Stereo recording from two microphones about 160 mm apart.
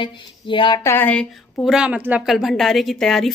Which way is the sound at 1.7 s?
5° right (ahead or behind).